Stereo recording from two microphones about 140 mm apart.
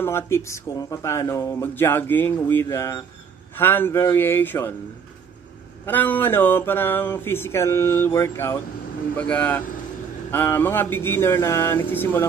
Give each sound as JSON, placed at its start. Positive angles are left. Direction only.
{"t": 0.0, "sound": "speech", "side_deg": 20}
{"t": 5.9, "sound": "speech", "side_deg": 15}